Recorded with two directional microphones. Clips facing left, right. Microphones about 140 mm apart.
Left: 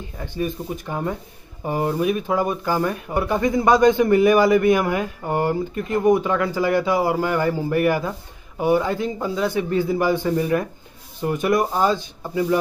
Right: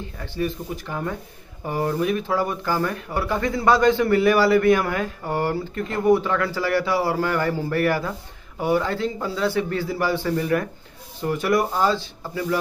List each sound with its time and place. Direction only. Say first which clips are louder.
0.4 s speech: left 1 dB; 20° left (ahead or behind)